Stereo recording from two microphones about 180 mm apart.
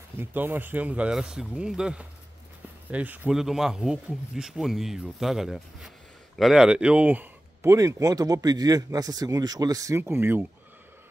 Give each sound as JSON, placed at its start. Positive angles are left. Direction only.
{"t": 0.2, "sound": "speech", "side_deg": -10}